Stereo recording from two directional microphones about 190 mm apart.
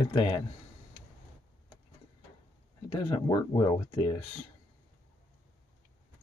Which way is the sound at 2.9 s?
25° left (ahead or behind).